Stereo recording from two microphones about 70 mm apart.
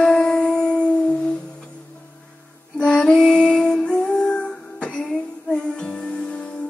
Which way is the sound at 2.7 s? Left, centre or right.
Centre.